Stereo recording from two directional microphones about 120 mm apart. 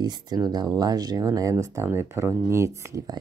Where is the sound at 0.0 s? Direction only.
35° right (ahead or behind).